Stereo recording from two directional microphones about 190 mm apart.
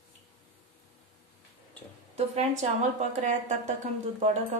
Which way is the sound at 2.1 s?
35° right (ahead or behind).